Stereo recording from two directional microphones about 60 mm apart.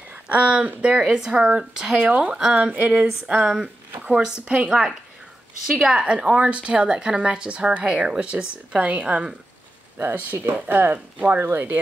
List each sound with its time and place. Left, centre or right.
0.1 s a woman's voice: centre
2.0 s speech: right
2.7 s speech: right
4.5 s a woman's voice: centre
9.9 s speech: right